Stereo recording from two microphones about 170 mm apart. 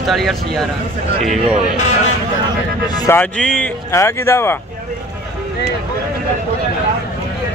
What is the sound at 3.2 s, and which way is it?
Speech, 5° left (ahead or behind).